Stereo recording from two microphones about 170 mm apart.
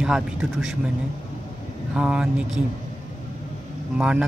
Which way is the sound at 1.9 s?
5° right (ahead or behind).